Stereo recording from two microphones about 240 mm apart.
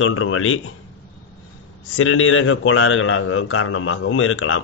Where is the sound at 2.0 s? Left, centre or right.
Left.